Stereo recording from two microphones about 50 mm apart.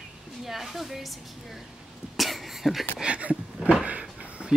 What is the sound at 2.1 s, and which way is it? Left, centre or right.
Cough, centre.